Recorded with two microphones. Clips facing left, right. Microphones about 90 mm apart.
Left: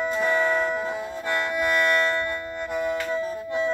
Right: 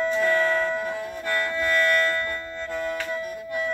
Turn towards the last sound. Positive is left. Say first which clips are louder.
# left 3 dB
turn(degrees=25)  # may be behind; listen again after turning